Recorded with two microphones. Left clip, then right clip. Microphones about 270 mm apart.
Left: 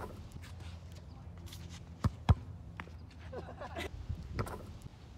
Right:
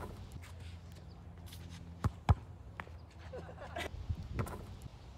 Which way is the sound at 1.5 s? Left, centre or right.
Left.